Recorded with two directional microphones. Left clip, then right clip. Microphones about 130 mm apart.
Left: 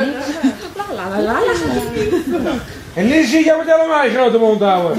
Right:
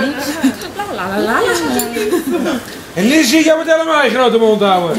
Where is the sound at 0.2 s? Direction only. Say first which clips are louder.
Right 2 dB; 40° right (ahead or behind).